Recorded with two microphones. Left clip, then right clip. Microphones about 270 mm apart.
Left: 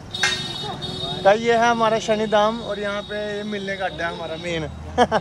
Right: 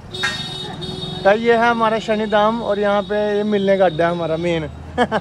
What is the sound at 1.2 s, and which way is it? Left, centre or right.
Speech, centre.